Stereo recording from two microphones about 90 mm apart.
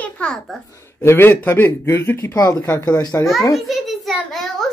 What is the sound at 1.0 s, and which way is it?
Speech, 25° left (ahead or behind).